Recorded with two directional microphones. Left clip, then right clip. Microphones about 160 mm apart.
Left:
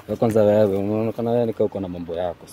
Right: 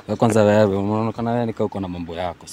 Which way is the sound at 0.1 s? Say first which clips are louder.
Right 1 dB; 90° right.